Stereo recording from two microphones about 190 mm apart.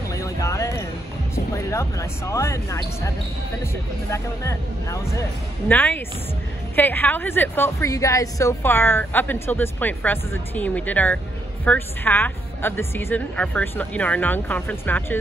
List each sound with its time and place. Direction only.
0.1 s a sound: 15° left (ahead or behind)
1.3 s speech: 15° left (ahead or behind)
4.1 s a woman's voice: 15° left (ahead or behind)